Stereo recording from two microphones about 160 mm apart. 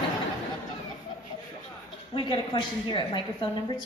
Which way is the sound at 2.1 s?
30° left (ahead or behind).